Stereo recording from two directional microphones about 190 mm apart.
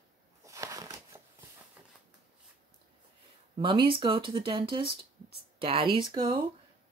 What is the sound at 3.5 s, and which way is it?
Speech, 25° right (ahead or behind).